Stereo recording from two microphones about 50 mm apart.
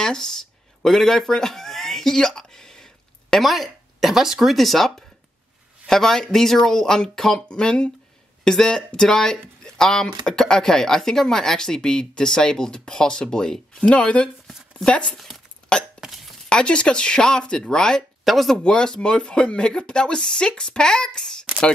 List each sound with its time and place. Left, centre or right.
0.0 s speech: centre
0.8 s a sound: centre
3.4 s speech: centre
4.6 s speech: centre
13.8 s speech: left
15.1 s speech: centre
16.0 s a sound: centre
16.4 s speech: centre
18.2 s speech: centre
18.6 s speech: centre